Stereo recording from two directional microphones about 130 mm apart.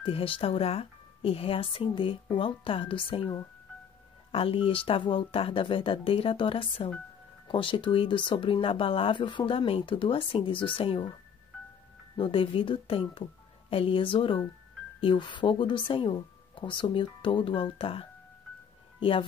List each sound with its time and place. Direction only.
0.0 s speech: 45° left (ahead or behind)
12.2 s speech: 45° left (ahead or behind)